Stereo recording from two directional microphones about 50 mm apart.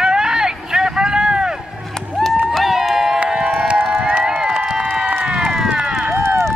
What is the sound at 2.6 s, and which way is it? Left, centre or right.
Crowd, centre.